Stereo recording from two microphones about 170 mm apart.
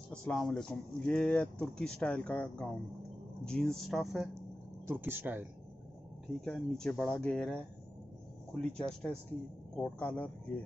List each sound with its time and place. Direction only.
0.1 s speech: 5° left (ahead or behind)
4.8 s speech: 10° right (ahead or behind)
6.4 s speech: 5° left (ahead or behind)